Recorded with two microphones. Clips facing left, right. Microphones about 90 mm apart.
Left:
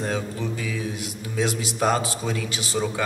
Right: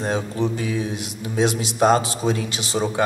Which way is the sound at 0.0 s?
25° right (ahead or behind).